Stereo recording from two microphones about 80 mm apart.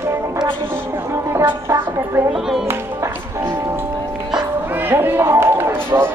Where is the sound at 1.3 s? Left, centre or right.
Right.